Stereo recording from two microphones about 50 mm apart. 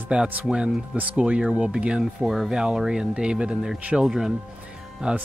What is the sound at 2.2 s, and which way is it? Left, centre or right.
Speech, centre.